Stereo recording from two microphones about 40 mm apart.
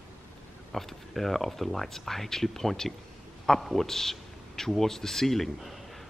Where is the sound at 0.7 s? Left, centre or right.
Centre.